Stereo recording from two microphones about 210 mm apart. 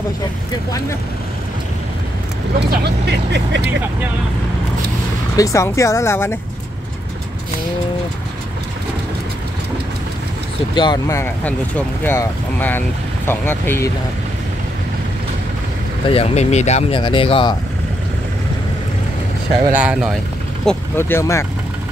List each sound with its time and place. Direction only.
2.6 s speech: 50° right (ahead or behind)
5.3 s speech: 15° left (ahead or behind)
10.7 s speech: 20° left (ahead or behind)
16.1 s speech: 30° left (ahead or behind)
19.7 s speech: 5° right (ahead or behind)
20.6 s speech: 10° left (ahead or behind)